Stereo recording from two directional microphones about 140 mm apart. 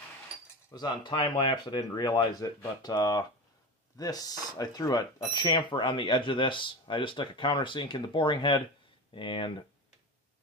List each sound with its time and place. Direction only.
0.7 s speech: 30° left (ahead or behind)